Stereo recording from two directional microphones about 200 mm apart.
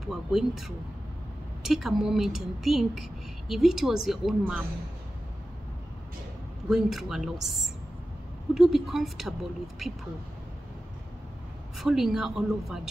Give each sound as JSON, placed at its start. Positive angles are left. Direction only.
{"t": 0.0, "sound": "speech", "side_deg": 0}
{"t": 6.7, "sound": "speech", "side_deg": 0}
{"t": 11.8, "sound": "speech", "side_deg": 0}